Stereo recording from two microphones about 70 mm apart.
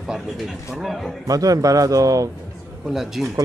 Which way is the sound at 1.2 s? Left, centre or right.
Right.